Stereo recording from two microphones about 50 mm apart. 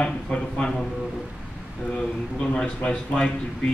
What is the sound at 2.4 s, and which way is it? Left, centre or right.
Speech, centre.